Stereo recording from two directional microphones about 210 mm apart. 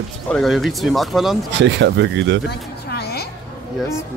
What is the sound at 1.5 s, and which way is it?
Speech, 55° right (ahead or behind).